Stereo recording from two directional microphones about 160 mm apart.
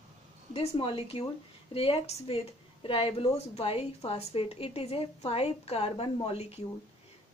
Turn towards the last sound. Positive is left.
turn(degrees=40)  # may be behind; listen again after turning